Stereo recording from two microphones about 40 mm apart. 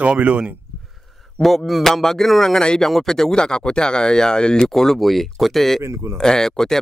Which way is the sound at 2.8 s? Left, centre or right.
Centre.